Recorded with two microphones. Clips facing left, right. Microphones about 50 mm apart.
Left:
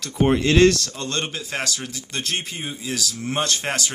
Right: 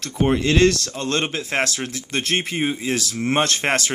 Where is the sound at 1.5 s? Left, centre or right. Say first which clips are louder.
Right 5 dB; right.